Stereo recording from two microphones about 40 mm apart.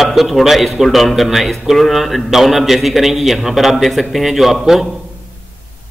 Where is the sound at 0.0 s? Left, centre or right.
Centre.